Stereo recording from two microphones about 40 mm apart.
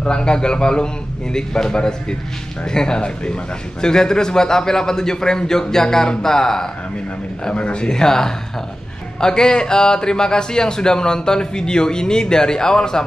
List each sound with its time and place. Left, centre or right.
0.0 s a man's voice: left
7.5 s a man's voice: left